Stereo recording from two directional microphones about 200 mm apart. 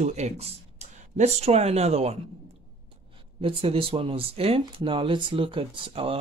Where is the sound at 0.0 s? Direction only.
35° right (ahead or behind).